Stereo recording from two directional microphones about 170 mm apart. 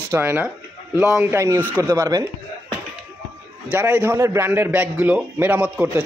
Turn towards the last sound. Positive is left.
turn(degrees=-10)  # may be behind; listen again after turning